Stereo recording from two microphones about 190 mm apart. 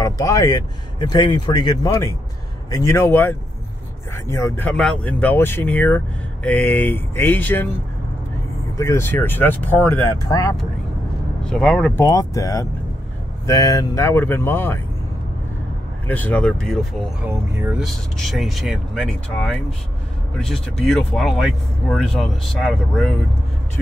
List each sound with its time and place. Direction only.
0.0 s speech: 15° left (ahead or behind)
4.6 s speech: 5° left (ahead or behind)
8.7 s speech: 15° left (ahead or behind)
11.4 s speech: 5° left (ahead or behind)
12.0 s speech: 20° left (ahead or behind)
16.1 s speech: 10° left (ahead or behind)
17.2 s speech: 5° right (ahead or behind)